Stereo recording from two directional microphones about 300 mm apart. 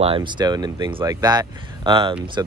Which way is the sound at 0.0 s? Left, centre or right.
Centre.